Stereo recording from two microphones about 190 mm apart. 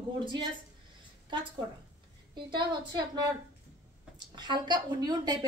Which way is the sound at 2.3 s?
25° right (ahead or behind).